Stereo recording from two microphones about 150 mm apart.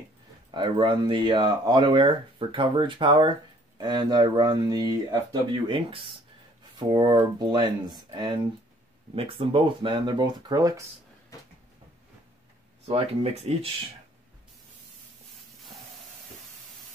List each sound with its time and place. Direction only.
0.5 s speech: 30° right (ahead or behind)
9.1 s speech: 35° right (ahead or behind)
11.3 s a sound: 20° left (ahead or behind)
12.8 s speech: 45° right (ahead or behind)